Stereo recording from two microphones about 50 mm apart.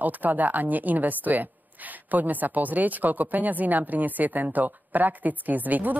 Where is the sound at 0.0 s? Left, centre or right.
Right.